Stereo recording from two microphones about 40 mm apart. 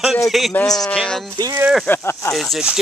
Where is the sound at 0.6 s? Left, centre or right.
Centre.